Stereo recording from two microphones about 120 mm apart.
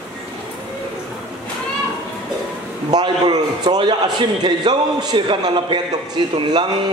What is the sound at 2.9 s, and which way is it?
A man's voice, 35° right (ahead or behind).